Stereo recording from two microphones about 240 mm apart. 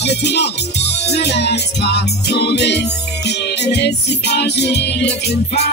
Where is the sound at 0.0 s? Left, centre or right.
Left.